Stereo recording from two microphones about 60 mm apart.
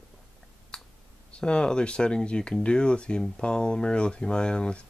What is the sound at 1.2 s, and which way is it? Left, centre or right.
Speech, centre.